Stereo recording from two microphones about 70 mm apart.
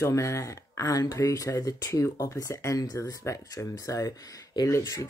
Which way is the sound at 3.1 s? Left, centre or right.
Left.